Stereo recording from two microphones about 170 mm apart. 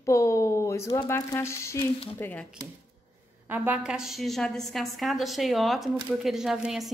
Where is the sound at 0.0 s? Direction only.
15° left (ahead or behind).